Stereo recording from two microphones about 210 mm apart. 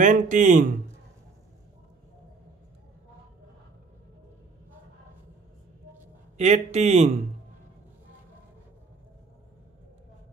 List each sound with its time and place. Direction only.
0.0 s a man's voice: 35° right (ahead or behind)
6.3 s a man's voice: 30° right (ahead or behind)